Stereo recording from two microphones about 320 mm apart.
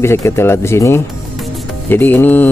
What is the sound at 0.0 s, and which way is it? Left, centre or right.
Speech, centre.